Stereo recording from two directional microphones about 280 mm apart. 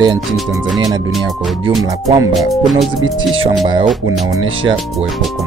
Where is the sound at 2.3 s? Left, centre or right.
Centre.